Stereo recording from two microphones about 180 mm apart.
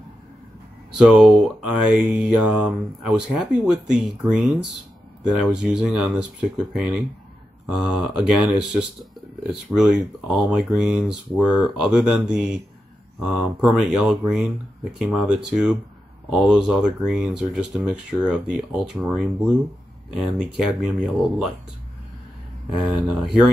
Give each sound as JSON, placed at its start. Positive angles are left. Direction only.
{"t": 0.9, "sound": "speech", "side_deg": -5}
{"t": 22.8, "sound": "speech", "side_deg": -5}